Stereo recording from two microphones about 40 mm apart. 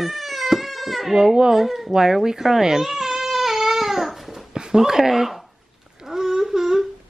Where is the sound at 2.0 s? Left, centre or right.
Centre.